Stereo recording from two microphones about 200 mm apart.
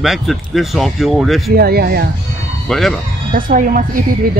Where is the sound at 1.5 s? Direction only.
50° right (ahead or behind).